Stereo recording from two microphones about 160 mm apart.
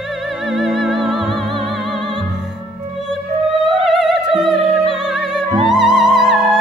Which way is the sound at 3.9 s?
Centre (ahead or behind).